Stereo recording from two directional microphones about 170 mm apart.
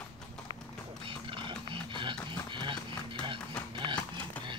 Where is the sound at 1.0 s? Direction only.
30° right (ahead or behind).